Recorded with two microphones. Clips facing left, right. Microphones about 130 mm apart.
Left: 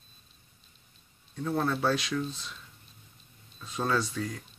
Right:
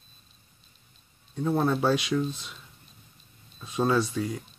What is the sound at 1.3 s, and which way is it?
Speech, 20° right (ahead or behind).